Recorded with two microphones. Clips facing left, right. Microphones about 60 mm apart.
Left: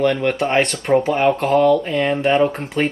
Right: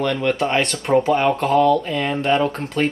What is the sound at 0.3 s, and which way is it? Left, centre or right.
Speech, centre.